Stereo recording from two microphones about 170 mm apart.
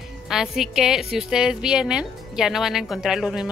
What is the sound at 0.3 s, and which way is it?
A woman's voice, 5° right (ahead or behind).